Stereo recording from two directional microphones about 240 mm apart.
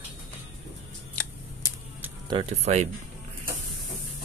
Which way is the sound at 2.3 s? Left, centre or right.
Right.